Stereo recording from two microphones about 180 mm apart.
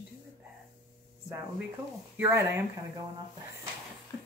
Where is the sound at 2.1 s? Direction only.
10° right (ahead or behind).